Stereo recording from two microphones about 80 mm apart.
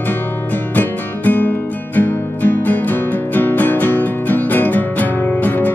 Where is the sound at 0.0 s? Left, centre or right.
Left.